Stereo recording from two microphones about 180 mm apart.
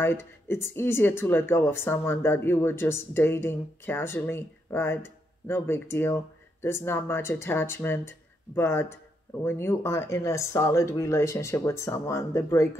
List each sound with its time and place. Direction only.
0.0 s speech: 15° left (ahead or behind)